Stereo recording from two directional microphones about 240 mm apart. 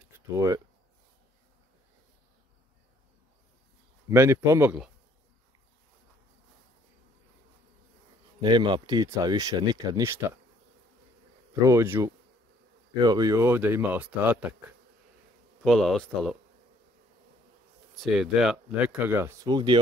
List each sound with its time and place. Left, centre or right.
0.3 s speech: centre
4.1 s speech: centre
8.4 s speech: centre
11.6 s speech: centre
15.6 s speech: centre
17.9 s speech: centre